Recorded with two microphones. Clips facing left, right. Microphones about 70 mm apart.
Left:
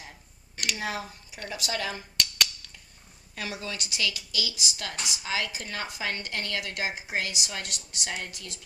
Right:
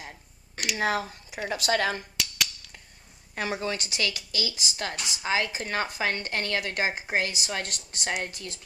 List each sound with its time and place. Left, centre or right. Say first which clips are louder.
0.7 s a woman's voice: right 11 dB; right
2.1 s finger snapping: left 1 dB; centre
3.3 s speech: right 6 dB; right